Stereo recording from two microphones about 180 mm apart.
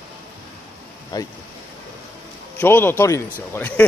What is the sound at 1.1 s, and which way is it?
Speech, 20° left (ahead or behind).